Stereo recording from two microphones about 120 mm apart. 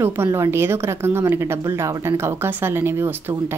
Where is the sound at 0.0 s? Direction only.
25° right (ahead or behind).